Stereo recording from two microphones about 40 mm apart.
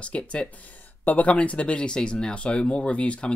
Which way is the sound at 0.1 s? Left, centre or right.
Left.